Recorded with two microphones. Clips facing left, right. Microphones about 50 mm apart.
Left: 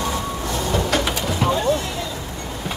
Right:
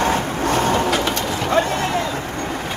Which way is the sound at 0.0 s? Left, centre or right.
Right.